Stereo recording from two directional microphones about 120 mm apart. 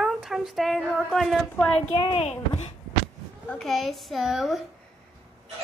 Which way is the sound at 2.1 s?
60° left (ahead or behind).